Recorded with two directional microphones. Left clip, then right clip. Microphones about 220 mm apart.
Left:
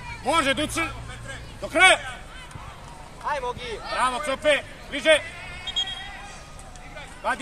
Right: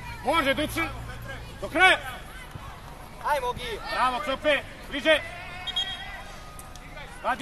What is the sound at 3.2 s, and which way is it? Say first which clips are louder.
Speech: right 1 dB; 50° right (ahead or behind).